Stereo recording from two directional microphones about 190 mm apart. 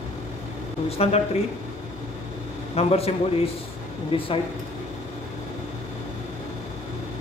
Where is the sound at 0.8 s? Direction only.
30° left (ahead or behind).